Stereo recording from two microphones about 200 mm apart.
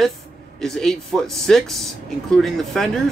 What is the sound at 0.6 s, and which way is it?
Speech, centre (ahead or behind).